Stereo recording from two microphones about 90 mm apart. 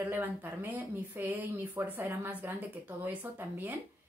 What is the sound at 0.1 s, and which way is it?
A woman's voice, 20° right (ahead or behind).